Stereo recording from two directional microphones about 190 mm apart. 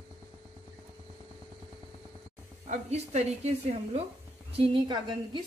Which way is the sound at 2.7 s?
35° right (ahead or behind).